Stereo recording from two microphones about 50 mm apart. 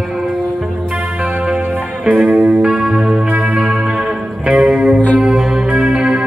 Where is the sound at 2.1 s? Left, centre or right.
Right.